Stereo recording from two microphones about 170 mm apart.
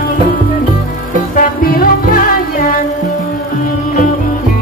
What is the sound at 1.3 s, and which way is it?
Music, 55° left (ahead or behind).